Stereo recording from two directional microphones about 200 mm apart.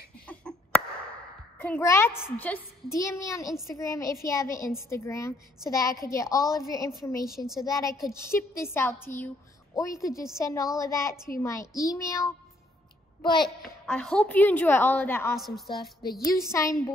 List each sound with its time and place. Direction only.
0.3 s a sound: 5° left (ahead or behind)
1.6 s a woman's voice: 10° left (ahead or behind)
7.3 s a woman's voice: centre (ahead or behind)
7.6 s a woman's voice: 15° left (ahead or behind)
13.8 s a woman's voice: 5° left (ahead or behind)
15.3 s a woman's voice: centre (ahead or behind)
16.5 s a woman's voice: 15° left (ahead or behind)